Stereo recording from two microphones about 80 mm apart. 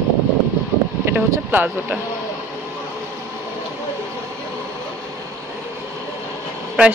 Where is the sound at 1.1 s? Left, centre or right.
Right.